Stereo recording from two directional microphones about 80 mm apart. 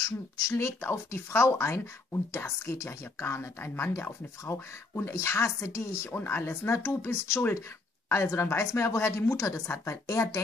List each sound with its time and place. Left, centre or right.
0.0 s speech: left